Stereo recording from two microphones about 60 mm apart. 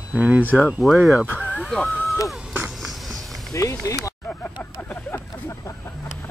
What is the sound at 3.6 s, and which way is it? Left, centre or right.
Speech, left.